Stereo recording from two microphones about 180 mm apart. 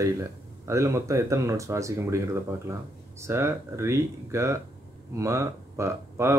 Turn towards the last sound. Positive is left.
turn(degrees=-15)  # may be behind; listen again after turning